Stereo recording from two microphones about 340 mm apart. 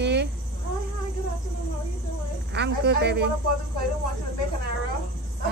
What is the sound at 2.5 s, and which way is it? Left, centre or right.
Speech, right.